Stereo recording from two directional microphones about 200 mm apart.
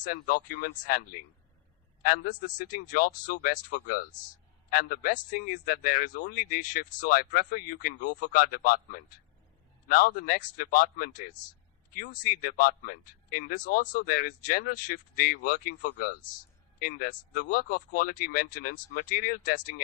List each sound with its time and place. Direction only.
0.0 s a man's voice: 45° left (ahead or behind)